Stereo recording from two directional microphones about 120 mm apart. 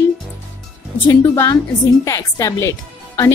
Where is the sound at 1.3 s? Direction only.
30° left (ahead or behind).